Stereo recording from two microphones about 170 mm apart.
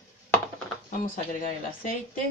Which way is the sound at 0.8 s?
55° left (ahead or behind).